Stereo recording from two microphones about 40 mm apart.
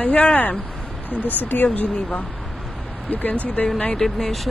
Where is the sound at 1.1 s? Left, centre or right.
Right.